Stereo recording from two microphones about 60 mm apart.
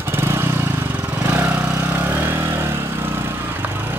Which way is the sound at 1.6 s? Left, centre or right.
Right.